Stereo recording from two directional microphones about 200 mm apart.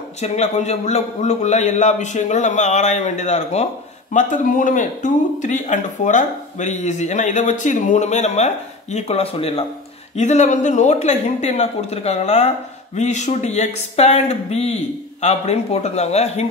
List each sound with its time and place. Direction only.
0.2 s speech: 35° left (ahead or behind)